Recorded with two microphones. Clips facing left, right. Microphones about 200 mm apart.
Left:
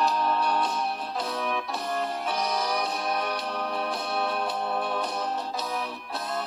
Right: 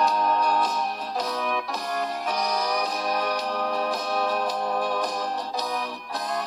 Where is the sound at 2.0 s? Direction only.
40° right (ahead or behind).